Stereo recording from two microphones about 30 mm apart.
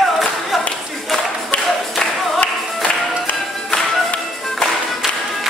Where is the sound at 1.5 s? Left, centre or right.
Left.